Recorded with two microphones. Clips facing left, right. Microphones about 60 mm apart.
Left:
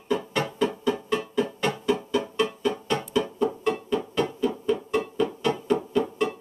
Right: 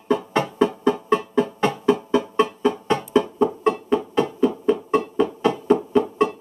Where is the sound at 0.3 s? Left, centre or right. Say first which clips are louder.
Right 5 dB; right.